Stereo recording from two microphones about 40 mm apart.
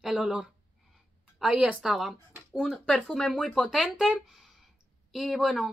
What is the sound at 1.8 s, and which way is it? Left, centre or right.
Speech, centre.